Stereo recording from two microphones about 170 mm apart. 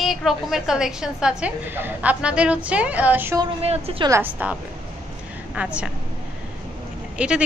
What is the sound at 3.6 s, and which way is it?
Speech, 35° right (ahead or behind).